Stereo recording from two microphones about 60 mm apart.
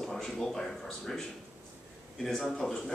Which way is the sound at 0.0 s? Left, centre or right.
Centre.